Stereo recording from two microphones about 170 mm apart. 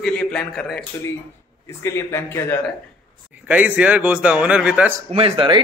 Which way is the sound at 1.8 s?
15° left (ahead or behind).